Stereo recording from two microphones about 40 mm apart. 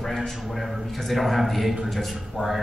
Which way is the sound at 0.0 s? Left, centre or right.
Centre.